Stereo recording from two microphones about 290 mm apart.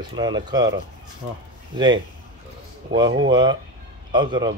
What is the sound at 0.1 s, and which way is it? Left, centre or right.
Speech, centre.